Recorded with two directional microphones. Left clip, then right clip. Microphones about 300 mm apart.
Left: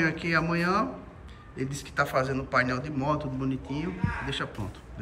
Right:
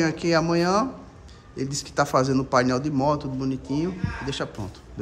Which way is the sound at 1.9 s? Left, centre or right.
Centre.